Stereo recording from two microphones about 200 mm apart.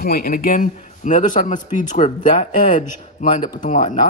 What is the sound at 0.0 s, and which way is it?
A man's voice, 45° left (ahead or behind).